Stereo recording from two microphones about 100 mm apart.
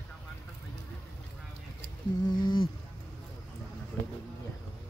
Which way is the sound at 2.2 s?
45° left (ahead or behind).